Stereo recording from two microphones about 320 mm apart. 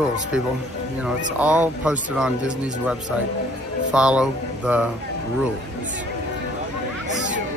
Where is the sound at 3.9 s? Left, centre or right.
Centre.